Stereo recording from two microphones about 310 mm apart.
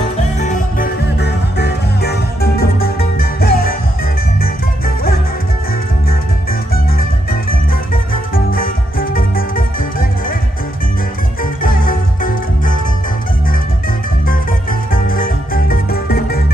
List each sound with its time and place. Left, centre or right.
0.0 s music: left
6.7 s music: left
11.6 s music: left
14.2 s music: left